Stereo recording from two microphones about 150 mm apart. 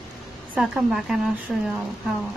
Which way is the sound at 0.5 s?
5° right (ahead or behind).